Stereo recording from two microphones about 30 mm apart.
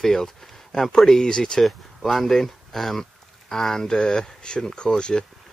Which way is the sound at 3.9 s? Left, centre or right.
Left.